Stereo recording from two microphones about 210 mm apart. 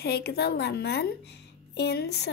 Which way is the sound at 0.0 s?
50° left (ahead or behind).